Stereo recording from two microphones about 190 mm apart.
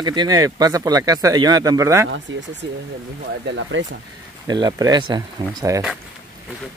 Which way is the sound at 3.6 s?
80° right.